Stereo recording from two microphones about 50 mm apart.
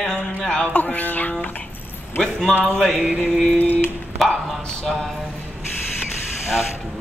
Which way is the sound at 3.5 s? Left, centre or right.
Left.